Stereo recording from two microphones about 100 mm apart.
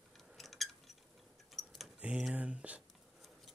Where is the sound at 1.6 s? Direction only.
Centre (ahead or behind).